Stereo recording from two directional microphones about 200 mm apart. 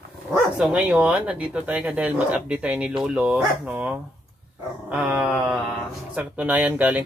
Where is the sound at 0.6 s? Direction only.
5° right (ahead or behind).